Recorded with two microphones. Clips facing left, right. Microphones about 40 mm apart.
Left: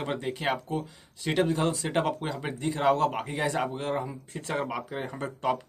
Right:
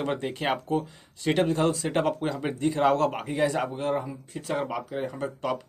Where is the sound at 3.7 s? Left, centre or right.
Centre.